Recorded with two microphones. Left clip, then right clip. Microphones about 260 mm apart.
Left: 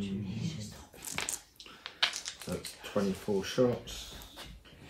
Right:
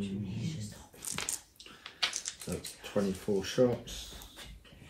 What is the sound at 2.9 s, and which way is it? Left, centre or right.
Speech, centre.